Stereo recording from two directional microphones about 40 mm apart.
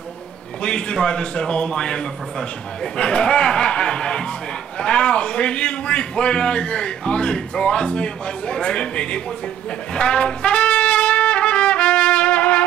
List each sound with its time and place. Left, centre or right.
0.6 s a man's voice: left
9.9 s trumpet: left